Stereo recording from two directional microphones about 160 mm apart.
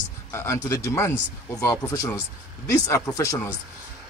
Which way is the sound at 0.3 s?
15° left (ahead or behind).